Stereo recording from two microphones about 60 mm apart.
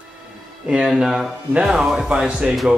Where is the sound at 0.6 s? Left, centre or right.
Centre.